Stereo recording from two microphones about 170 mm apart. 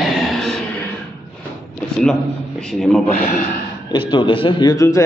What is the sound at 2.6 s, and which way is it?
Speech, 5° left (ahead or behind).